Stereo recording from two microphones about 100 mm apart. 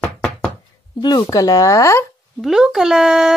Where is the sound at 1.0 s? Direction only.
45° left (ahead or behind).